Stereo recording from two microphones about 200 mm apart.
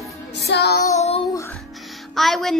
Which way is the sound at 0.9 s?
35° left (ahead or behind).